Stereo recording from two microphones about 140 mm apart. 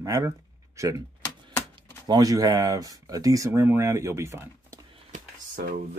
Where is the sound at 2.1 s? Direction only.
25° right (ahead or behind).